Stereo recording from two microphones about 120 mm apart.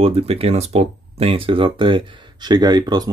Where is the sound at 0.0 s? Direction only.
55° right (ahead or behind).